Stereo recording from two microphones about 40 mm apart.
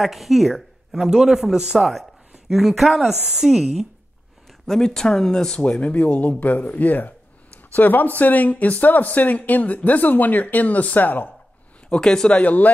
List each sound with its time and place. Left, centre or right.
0.0 s speech: centre
1.8 s speech: centre
2.3 s speech: centre
4.5 s speech: centre
5.6 s speech: left
11.9 s speech: centre
12.3 s speech: left